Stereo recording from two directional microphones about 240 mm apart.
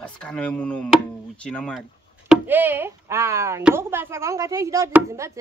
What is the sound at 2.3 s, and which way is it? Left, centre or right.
Speech, centre.